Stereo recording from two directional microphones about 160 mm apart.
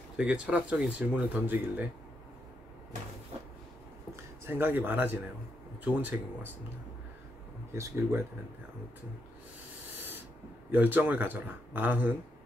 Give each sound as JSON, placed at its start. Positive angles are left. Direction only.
{"t": 0.2, "sound": "speech", "side_deg": -5}
{"t": 4.5, "sound": "speech", "side_deg": -15}
{"t": 7.7, "sound": "speech", "side_deg": -15}
{"t": 10.7, "sound": "speech", "side_deg": -10}